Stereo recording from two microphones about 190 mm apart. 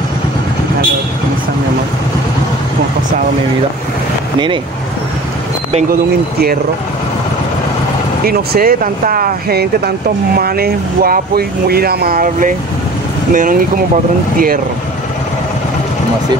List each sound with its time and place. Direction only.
8.3 s speech: 50° right (ahead or behind)